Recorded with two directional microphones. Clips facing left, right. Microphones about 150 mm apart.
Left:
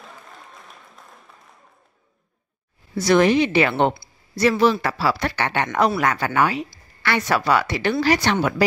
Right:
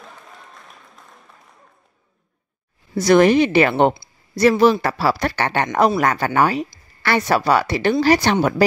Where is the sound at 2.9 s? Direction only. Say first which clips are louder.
Right 3 dB; 45° right (ahead or behind).